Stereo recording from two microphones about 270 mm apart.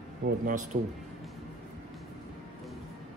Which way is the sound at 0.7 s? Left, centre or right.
Right.